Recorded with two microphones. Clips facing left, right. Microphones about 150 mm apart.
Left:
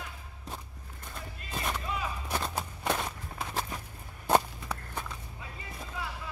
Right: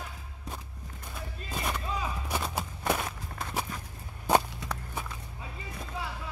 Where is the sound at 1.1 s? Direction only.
Centre (ahead or behind).